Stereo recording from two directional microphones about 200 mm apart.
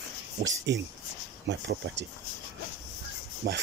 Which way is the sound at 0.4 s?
65° right (ahead or behind).